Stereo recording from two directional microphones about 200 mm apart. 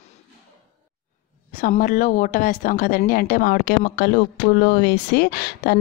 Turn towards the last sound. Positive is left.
turn(degrees=45)  # may be behind; listen again after turning